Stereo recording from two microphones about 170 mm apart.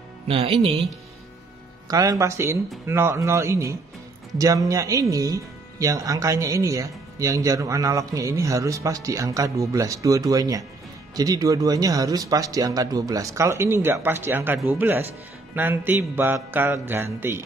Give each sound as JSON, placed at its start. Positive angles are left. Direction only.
{"t": 0.3, "sound": "speech", "side_deg": -35}
{"t": 1.9, "sound": "mantra", "side_deg": -20}
{"t": 4.4, "sound": "speech", "side_deg": -20}
{"t": 13.7, "sound": "mantra", "side_deg": -15}